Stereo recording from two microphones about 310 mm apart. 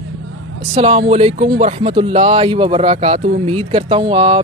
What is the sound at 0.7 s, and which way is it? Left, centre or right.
Speech, centre.